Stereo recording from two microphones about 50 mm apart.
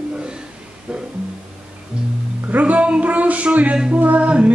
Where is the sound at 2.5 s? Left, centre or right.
Right.